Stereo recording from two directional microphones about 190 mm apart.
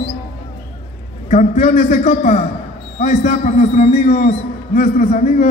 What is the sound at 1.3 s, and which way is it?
A man's voice, 40° left (ahead or behind).